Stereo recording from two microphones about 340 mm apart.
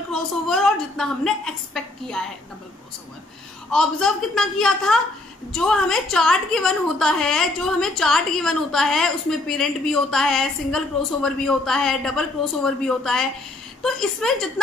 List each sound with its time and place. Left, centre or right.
0.1 s a woman's voice: centre
3.7 s a woman's voice: centre